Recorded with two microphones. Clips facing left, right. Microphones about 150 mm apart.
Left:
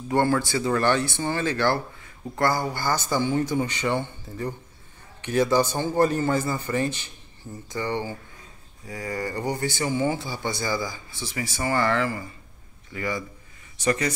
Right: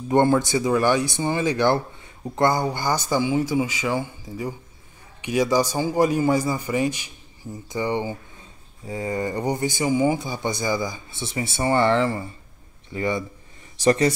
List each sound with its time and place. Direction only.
0.1 s speech: 20° right (ahead or behind)